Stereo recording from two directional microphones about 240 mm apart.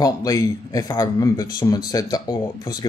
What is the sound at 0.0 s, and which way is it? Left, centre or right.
Speech, centre.